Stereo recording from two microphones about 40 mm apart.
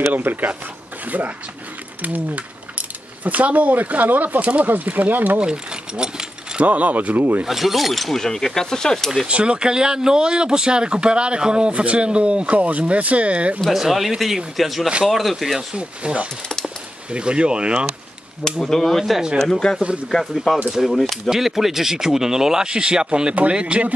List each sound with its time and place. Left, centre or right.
0.1 s speech: right
5.4 s mechanisms: right
6.6 s speech: right
7.4 s speech: centre
8.2 s speech: centre
9.3 s speech: right
13.7 s speech: centre
15.7 s speech: right
18.4 s speech: centre
20.8 s speech: centre; by 23.9 s right